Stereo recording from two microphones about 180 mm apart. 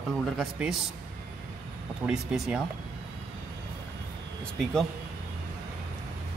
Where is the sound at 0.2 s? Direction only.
Centre (ahead or behind).